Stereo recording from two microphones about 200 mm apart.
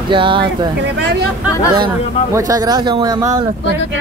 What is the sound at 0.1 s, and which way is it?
Speech, 25° right (ahead or behind).